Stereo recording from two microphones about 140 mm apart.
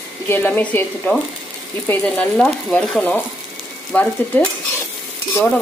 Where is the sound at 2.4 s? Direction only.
5° left (ahead or behind).